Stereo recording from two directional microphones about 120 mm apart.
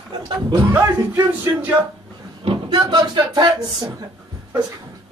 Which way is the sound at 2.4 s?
45° right (ahead or behind).